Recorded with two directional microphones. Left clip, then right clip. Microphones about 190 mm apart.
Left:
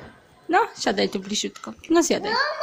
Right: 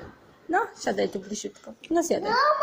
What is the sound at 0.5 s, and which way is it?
A child's voice, 35° left (ahead or behind).